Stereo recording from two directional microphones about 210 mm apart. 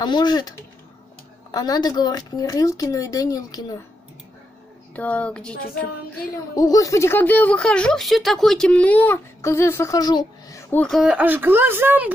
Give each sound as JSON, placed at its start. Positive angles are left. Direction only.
{"t": 0.0, "sound": "speech", "side_deg": 20}
{"t": 4.9, "sound": "speech", "side_deg": 5}
{"t": 6.5, "sound": "speech", "side_deg": 15}